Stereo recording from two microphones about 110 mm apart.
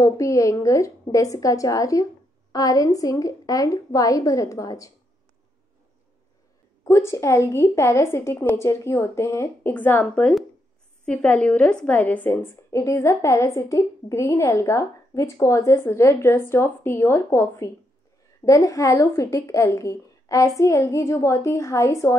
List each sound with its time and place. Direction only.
0.0 s a woman's voice: 30° left (ahead or behind)
6.8 s a woman's voice: 25° left (ahead or behind)